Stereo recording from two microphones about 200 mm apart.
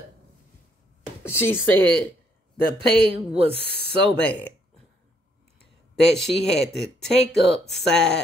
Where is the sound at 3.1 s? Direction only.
25° right (ahead or behind).